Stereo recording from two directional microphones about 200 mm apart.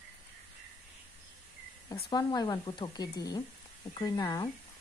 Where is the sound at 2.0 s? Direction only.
20° left (ahead or behind).